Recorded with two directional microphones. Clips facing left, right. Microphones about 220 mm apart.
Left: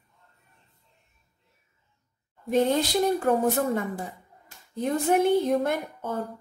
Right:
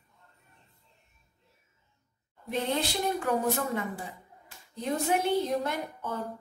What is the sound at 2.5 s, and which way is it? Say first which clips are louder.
A woman's voice: left 8 dB; 40° left (ahead or behind).